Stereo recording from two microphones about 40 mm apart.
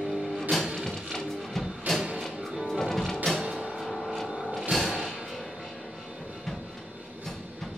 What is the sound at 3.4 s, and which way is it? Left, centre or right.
Music, centre.